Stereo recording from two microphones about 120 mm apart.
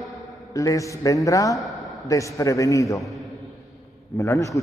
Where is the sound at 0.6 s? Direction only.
25° left (ahead or behind).